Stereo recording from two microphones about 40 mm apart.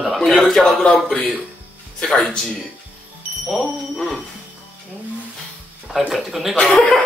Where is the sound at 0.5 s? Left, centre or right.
Centre.